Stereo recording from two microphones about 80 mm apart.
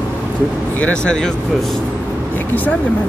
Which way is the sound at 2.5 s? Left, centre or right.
Left.